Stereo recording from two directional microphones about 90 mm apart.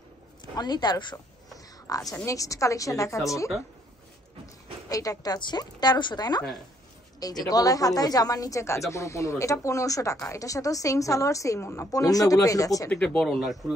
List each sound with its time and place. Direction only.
0.6 s a woman's voice: 50° left (ahead or behind)
1.1 s a sound: 40° left (ahead or behind)
2.1 s a woman's voice: 35° left (ahead or behind)
4.8 s a woman's voice: 40° left (ahead or behind)
12.9 s speech: 5° left (ahead or behind)